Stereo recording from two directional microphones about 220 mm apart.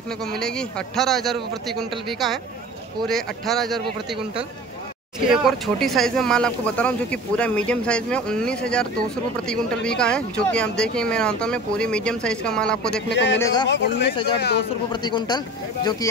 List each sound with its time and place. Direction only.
0.2 s speech: centre (ahead or behind)
5.3 s speech: centre (ahead or behind)
12.9 s a man's voice: 50° left (ahead or behind)
14.9 s speech: 20° left (ahead or behind)